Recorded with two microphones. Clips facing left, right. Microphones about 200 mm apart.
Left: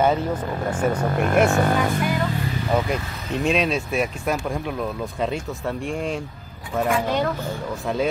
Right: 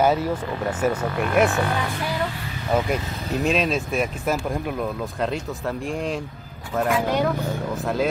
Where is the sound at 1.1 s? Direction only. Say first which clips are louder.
Left 3 dB; 45° left (ahead or behind).